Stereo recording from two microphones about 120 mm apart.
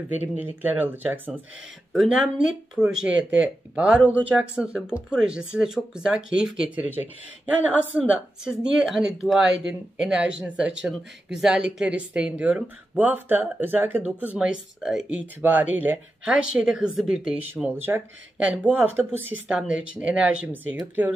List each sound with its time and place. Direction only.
0.4 s speech: 15° right (ahead or behind)
1.9 s speech: 5° right (ahead or behind)
17.7 s speech: 15° right (ahead or behind)